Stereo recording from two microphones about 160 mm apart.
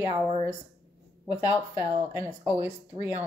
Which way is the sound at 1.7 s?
10° right (ahead or behind).